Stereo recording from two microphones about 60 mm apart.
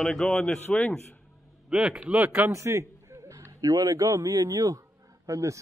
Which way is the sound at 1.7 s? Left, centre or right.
Centre.